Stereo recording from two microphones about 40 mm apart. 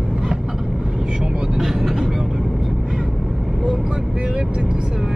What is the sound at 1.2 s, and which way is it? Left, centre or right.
Speech, centre.